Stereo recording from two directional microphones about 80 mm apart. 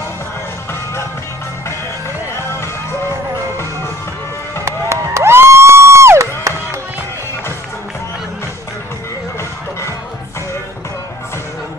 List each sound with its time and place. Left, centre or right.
4.6 s music: right